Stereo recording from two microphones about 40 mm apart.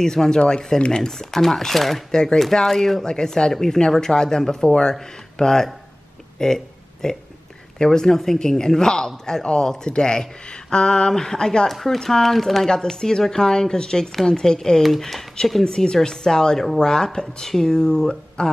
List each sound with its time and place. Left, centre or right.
0.0 s speech: centre
1.1 s speech: centre
2.0 s speech: centre
6.3 s a sound: centre
7.8 s speech: centre
14.8 s speech: centre
15.6 s speech: centre